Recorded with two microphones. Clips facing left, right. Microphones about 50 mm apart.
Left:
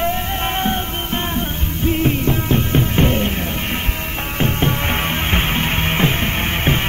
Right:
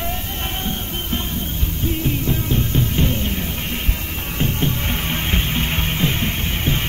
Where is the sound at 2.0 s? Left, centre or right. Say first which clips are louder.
Left 4 dB; left.